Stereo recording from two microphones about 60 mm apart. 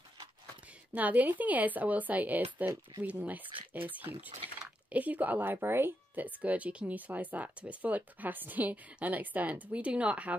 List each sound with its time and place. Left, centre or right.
0.9 s speech: right